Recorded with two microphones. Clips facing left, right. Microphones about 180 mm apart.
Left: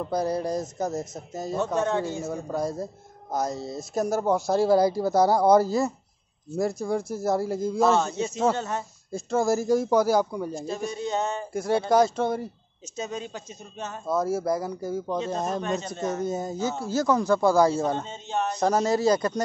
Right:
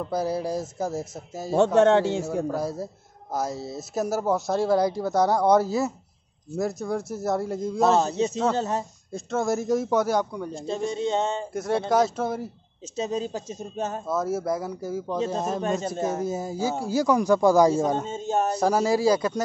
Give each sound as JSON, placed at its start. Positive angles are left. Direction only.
{"t": 0.1, "sound": "speech", "side_deg": -5}
{"t": 1.5, "sound": "a man's voice", "side_deg": -75}
{"t": 2.5, "sound": "speech", "side_deg": -5}
{"t": 8.0, "sound": "speech", "side_deg": -35}
{"t": 9.1, "sound": "speech", "side_deg": 0}
{"t": 10.9, "sound": "a sound", "side_deg": -25}
{"t": 11.5, "sound": "speech", "side_deg": 0}
{"t": 12.9, "sound": "speech", "side_deg": -30}
{"t": 14.0, "sound": "speech", "side_deg": 0}
{"t": 15.6, "sound": "speech", "side_deg": -50}
{"t": 15.9, "sound": "speech", "side_deg": -5}
{"t": 18.0, "sound": "speech", "side_deg": -45}
{"t": 18.6, "sound": "speech", "side_deg": -10}